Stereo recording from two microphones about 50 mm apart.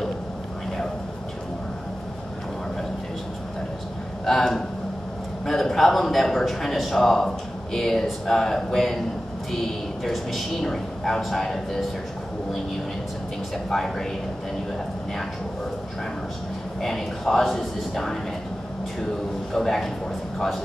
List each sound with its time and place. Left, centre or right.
4.3 s a man's voice: centre
10.0 s speech: centre
13.7 s speech: centre
16.8 s speech: centre
19.5 s a man's voice: centre